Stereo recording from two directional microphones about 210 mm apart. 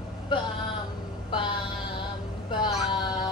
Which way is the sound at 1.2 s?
25° left (ahead or behind).